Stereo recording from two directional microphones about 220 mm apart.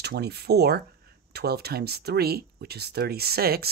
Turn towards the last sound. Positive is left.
turn(degrees=-45)  # may be behind; listen again after turning